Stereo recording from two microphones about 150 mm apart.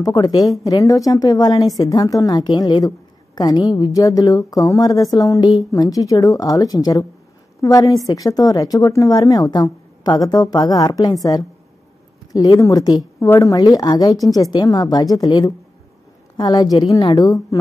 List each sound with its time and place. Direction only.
0.0 s a woman's voice: 25° left (ahead or behind)